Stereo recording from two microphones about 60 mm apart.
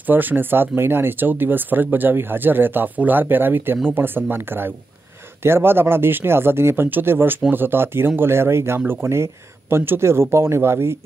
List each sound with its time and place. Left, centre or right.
0.0 s speech: right